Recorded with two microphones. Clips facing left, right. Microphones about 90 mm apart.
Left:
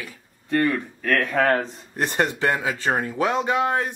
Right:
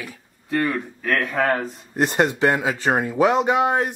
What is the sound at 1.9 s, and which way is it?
Speech, 15° right (ahead or behind).